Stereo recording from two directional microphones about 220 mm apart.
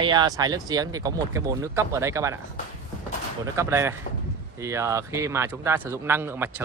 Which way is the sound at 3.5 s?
10° right (ahead or behind).